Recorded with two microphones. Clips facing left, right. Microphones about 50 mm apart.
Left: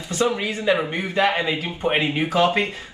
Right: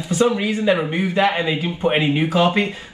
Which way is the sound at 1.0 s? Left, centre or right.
Centre.